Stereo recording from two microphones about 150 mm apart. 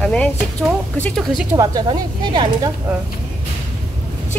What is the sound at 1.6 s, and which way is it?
Speech, 25° right (ahead or behind).